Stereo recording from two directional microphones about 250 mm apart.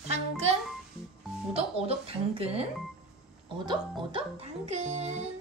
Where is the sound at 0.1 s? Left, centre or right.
Right.